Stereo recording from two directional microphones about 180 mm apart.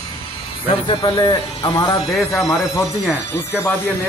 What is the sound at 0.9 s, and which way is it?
Speech, 25° left (ahead or behind).